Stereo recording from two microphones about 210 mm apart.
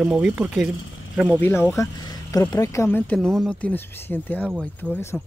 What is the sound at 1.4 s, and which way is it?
Speech, 10° left (ahead or behind).